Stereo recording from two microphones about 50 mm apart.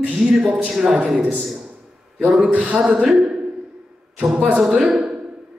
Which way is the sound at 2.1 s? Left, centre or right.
Centre.